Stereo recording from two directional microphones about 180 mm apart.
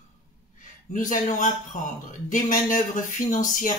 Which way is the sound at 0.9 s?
45° left (ahead or behind).